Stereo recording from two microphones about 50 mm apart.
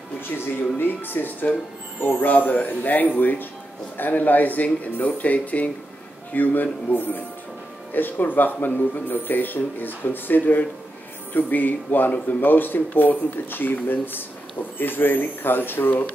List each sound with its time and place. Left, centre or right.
0.7 s speech: left